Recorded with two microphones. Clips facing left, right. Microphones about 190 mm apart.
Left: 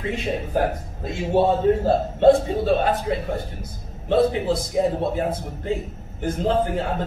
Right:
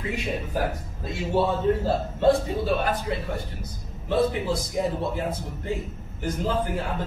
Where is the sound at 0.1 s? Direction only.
25° left (ahead or behind).